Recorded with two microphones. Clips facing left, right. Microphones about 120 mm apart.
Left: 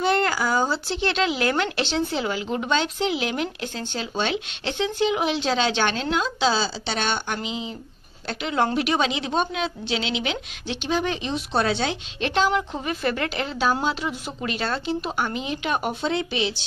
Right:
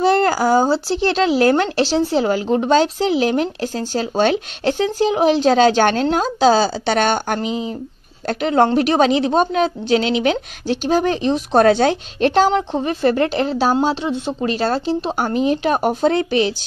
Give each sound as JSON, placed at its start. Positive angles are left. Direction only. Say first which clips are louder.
{"t": 0.0, "sound": "speech", "louder": "right 7 dB", "side_deg": -35}
{"t": 13.8, "sound": "speech", "louder": "right 7 dB", "side_deg": -25}